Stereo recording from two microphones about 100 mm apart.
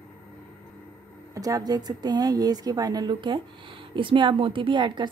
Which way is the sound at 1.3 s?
35° right (ahead or behind).